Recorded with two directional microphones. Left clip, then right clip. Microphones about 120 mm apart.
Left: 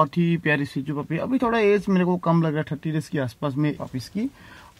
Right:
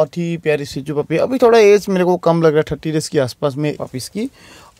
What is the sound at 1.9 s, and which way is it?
Speech, 65° right (ahead or behind).